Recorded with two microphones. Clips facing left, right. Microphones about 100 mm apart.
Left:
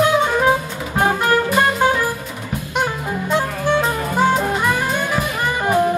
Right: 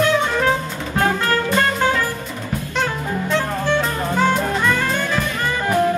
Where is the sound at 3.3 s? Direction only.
15° left (ahead or behind).